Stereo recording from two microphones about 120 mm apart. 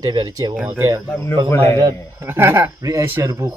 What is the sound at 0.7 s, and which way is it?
Speech, 25° right (ahead or behind).